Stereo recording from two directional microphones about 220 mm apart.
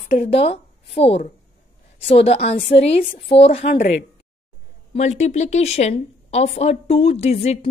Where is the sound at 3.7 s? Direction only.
40° left (ahead or behind).